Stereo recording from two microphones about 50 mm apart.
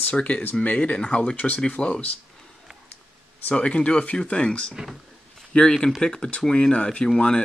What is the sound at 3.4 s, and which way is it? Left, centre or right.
Speech, left.